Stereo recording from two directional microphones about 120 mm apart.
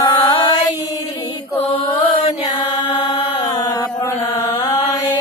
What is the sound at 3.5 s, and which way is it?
Chant, 30° left (ahead or behind).